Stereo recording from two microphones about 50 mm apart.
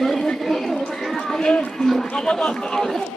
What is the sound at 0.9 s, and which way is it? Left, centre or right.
Chatter, centre.